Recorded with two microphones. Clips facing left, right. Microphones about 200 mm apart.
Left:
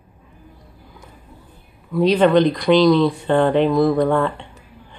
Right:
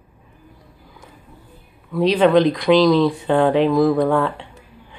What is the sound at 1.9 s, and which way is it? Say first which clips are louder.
Speech: even; centre (ahead or behind).